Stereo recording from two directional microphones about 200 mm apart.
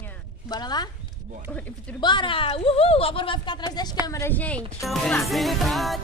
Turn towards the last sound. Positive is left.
turn(degrees=0)  # may be behind; listen again after turning